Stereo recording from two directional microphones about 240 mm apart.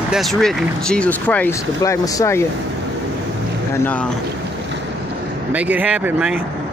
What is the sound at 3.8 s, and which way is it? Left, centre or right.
Speech, centre.